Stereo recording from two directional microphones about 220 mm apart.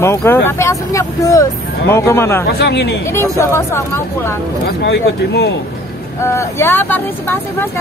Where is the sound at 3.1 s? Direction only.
10° left (ahead or behind).